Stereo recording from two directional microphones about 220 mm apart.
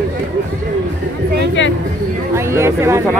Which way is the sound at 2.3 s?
10° right (ahead or behind).